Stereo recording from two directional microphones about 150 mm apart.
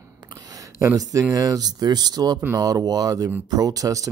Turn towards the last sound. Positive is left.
turn(degrees=-25)  # may be behind; listen again after turning